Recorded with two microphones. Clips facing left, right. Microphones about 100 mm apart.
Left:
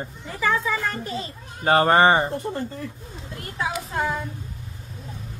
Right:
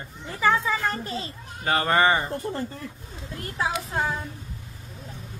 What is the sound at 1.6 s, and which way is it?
Speech, 35° left (ahead or behind).